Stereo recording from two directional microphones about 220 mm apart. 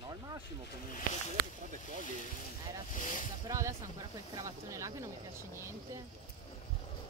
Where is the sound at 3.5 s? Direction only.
15° right (ahead or behind).